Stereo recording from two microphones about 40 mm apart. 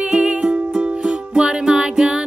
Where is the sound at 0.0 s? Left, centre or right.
Right.